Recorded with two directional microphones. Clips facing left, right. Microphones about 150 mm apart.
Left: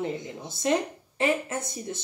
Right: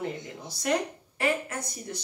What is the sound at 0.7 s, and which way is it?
Speech, 25° left (ahead or behind).